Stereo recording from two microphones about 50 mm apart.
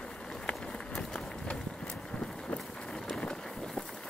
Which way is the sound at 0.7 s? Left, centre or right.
Centre.